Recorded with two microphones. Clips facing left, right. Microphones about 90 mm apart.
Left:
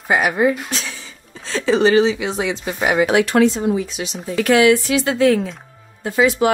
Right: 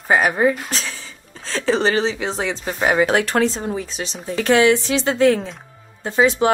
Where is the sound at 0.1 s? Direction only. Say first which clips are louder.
Even; 40° right (ahead or behind).